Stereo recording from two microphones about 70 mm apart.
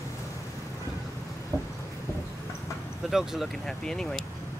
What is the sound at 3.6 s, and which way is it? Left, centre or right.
Speech, centre.